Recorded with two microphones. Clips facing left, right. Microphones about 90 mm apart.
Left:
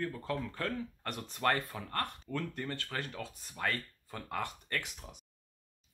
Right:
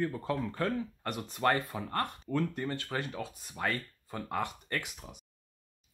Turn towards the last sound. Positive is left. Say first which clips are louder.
# right 2 dB
turn(degrees=-10)  # may be behind; listen again after turning